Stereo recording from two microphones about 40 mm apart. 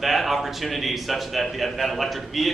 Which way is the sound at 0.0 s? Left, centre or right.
Centre.